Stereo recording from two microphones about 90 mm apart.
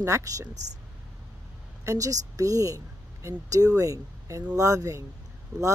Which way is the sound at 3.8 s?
35° right (ahead or behind).